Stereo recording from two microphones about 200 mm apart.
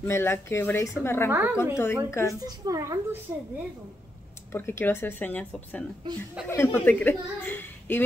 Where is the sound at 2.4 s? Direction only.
15° right (ahead or behind).